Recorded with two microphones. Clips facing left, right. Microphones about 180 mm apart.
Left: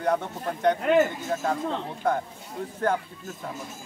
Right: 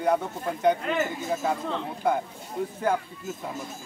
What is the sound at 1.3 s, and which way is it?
A man's voice, 5° right (ahead or behind).